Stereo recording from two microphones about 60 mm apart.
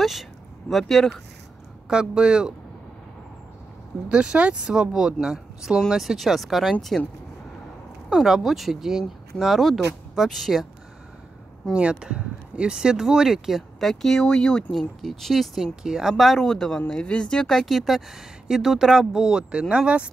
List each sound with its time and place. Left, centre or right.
0.0 s speech: centre
1.9 s speech: centre
4.1 s speech: centre
8.1 s speech: centre
11.7 s speech: centre
16.3 s speech: centre